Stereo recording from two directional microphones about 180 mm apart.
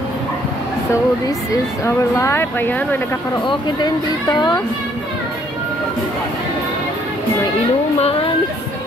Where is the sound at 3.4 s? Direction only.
25° left (ahead or behind).